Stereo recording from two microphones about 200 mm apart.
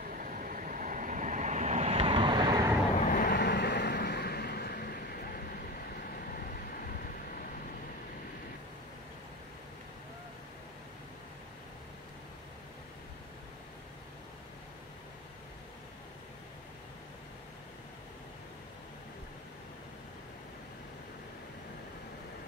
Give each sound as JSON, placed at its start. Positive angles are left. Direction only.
{"t": 0.2, "sound": "vehicle", "side_deg": -45}
{"t": 3.0, "sound": "vehicle", "side_deg": 45}